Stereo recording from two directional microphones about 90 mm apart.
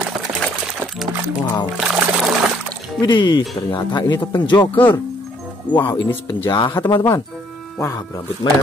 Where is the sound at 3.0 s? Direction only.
60° left (ahead or behind).